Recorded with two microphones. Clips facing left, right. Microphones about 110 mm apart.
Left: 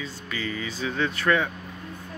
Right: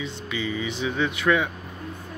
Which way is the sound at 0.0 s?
15° right (ahead or behind).